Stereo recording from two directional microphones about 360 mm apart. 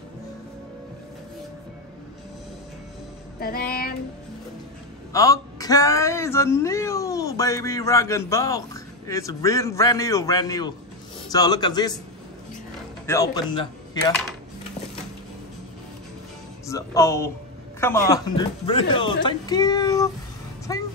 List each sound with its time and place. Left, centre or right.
3.3 s music: left
5.1 s speech: centre
13.0 s speech: centre
16.6 s speech: centre